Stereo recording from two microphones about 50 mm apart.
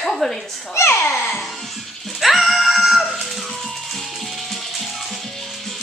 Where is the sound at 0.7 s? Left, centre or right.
Left.